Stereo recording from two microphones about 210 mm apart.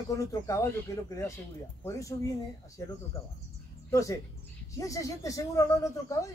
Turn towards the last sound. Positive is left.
turn(degrees=15)  # may be behind; listen again after turning